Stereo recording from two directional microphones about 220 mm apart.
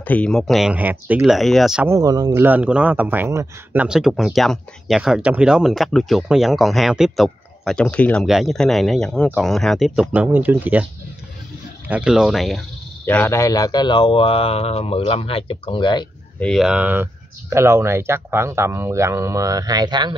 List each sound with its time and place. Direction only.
0.0 s a man's voice: 5° left (ahead or behind)
2.0 s a man's voice: 15° right (ahead or behind)
11.9 s speech: 5° right (ahead or behind); by 16.1 s 20° left (ahead or behind)
16.3 s speech: centre (ahead or behind); by 20.2 s 20° right (ahead or behind)